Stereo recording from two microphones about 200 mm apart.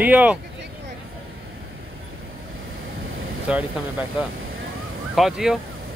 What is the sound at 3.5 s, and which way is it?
Speech, 5° right (ahead or behind).